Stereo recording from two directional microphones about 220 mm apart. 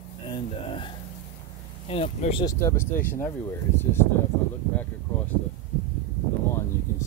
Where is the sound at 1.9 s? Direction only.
25° left (ahead or behind).